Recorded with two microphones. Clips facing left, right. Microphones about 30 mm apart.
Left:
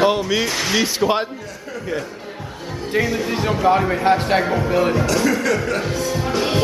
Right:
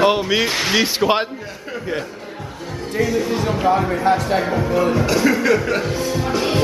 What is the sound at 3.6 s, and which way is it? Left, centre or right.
Speech, centre.